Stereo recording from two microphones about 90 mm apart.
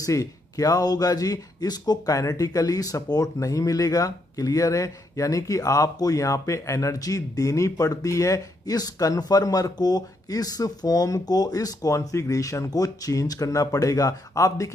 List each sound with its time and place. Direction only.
0.0 s speech: 40° left (ahead or behind)